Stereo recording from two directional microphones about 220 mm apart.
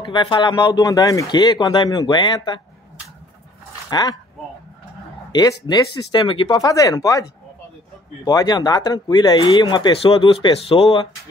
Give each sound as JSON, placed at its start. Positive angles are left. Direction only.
{"t": 0.0, "sound": "speech", "side_deg": 20}
{"t": 3.9, "sound": "speech", "side_deg": 15}
{"t": 5.3, "sound": "speech", "side_deg": 15}
{"t": 8.3, "sound": "speech", "side_deg": 15}